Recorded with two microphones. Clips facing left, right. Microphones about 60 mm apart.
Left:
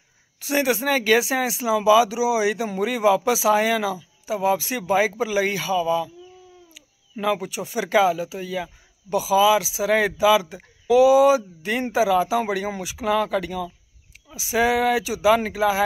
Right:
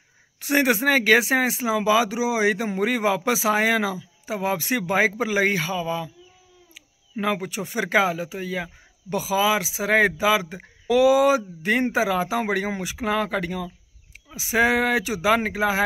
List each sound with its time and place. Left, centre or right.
0.4 s speech: right